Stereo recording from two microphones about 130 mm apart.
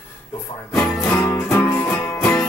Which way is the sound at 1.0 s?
20° left (ahead or behind).